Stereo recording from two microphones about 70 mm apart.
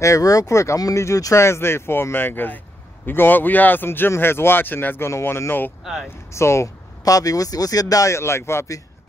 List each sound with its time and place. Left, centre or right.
0.0 s speech: left
7.1 s speech: left